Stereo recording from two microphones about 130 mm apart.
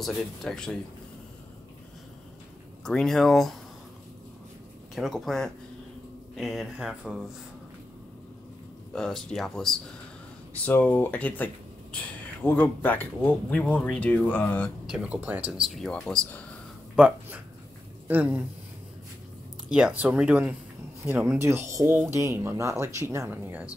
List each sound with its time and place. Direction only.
0.0 s speech: 5° left (ahead or behind)
2.8 s speech: 5° left (ahead or behind)
4.9 s speech: centre (ahead or behind)
8.9 s speech: 5° left (ahead or behind)
14.9 s speech: 10° right (ahead or behind); by 16.4 s 10° left (ahead or behind)
16.9 s speech: 10° right (ahead or behind)
19.7 s speech: 10° right (ahead or behind)